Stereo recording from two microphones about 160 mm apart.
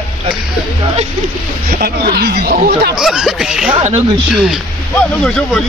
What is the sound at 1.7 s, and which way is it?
Speech, 75° right (ahead or behind).